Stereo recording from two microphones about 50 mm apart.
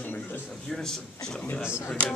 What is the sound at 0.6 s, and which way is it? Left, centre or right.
Speech, centre.